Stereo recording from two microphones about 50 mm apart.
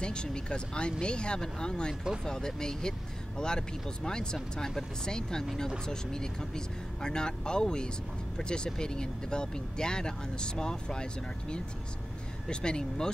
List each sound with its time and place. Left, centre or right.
0.0 s speech: centre